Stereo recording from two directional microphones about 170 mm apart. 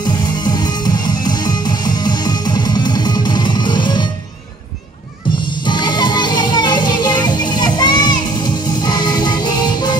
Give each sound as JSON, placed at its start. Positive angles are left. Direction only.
{"t": 0.0, "sound": "music", "side_deg": 25}
{"t": 5.6, "sound": "music", "side_deg": 25}